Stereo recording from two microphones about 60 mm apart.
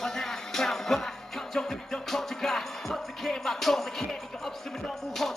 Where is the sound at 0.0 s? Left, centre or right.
Centre.